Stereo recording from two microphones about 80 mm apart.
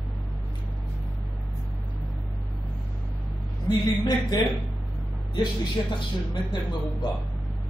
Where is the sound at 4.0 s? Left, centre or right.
Left.